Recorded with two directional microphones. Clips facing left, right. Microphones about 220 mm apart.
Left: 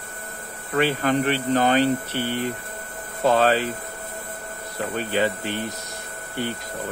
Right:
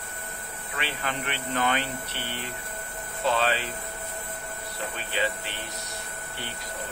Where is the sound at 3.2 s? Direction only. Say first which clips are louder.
Left 7 dB; 45° left (ahead or behind).